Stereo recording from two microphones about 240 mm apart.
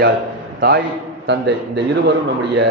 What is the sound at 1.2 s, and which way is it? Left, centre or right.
A man's voice, right.